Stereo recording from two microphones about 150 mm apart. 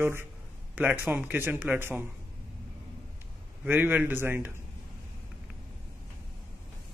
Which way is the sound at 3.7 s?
15° right (ahead or behind).